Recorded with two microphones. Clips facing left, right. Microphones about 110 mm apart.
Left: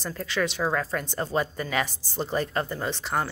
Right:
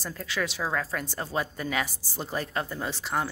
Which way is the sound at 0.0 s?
Centre (ahead or behind).